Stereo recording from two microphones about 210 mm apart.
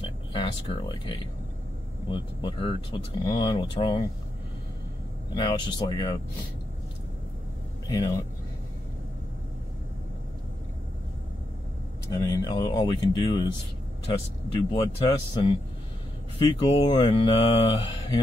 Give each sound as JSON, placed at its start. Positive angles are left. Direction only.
{"t": 0.0, "sound": "speech", "side_deg": 25}
{"t": 5.3, "sound": "speech", "side_deg": 20}
{"t": 7.8, "sound": "speech", "side_deg": 20}
{"t": 12.1, "sound": "speech", "side_deg": 15}